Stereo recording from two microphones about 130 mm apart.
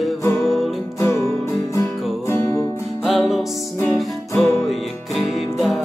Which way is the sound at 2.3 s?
20° left (ahead or behind).